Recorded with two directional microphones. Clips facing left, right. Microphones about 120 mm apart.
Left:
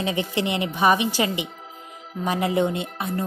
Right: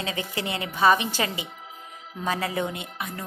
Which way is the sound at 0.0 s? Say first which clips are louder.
Left 6 dB; 25° left (ahead or behind).